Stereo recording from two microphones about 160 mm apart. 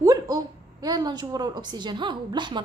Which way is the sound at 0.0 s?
20° right (ahead or behind).